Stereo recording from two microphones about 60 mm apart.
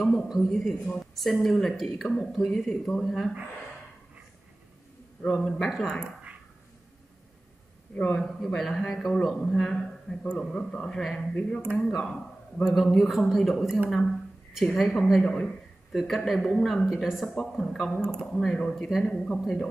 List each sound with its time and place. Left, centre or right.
0.3 s speech: centre
5.4 s speech: centre
7.9 s a man's voice: left
8.2 s a man's voice: centre
13.8 s a sound: centre
14.8 s speech: centre
15.2 s a man's voice: centre
15.9 s speech: centre
17.3 s a man's voice: centre